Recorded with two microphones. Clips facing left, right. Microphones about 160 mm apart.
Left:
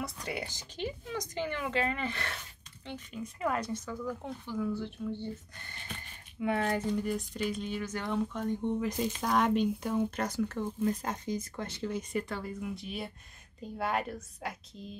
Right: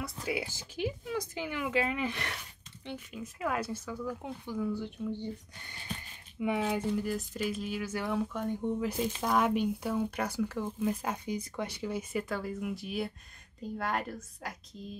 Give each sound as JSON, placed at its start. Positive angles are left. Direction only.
{"t": 0.0, "sound": "speech", "side_deg": 0}